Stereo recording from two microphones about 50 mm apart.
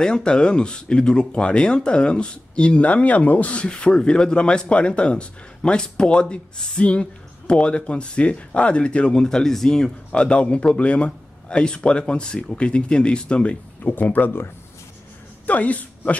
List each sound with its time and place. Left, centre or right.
0.0 s speech: centre
10.1 s speech: left
13.8 s speech: left
15.4 s speech: left